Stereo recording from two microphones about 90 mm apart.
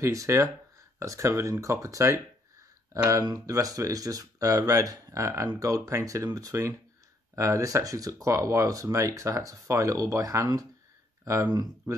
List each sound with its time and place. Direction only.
0.0 s speech: 35° right (ahead or behind)